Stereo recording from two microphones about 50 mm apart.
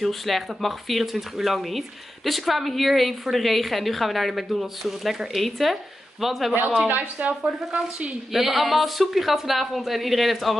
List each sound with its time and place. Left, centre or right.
0.0 s speech: centre
6.9 s a woman's voice: right
8.3 s speech: centre